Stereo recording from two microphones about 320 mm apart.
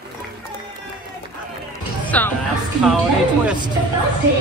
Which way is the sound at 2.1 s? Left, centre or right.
Centre.